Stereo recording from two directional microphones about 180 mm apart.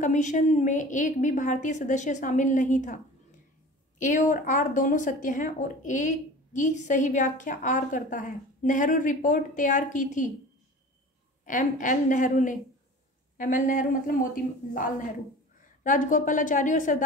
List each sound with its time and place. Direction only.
0.0 s speech: 45° left (ahead or behind)
11.4 s speech: 45° left (ahead or behind)